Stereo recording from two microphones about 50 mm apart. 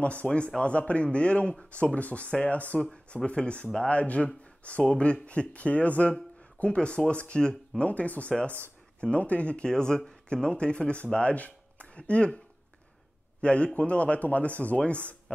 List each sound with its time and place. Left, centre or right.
0.0 s speech: left
7.8 s speech: left
13.4 s a man's voice: left